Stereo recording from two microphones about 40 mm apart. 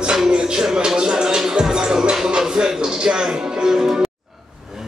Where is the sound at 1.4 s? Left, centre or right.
Centre.